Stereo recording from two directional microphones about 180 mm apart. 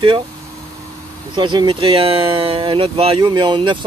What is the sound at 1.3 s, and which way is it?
Speech, 25° right (ahead or behind).